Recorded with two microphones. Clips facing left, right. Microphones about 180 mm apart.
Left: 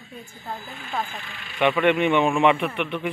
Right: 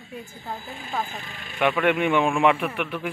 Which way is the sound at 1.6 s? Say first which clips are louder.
Left 2 dB; 5° right (ahead or behind).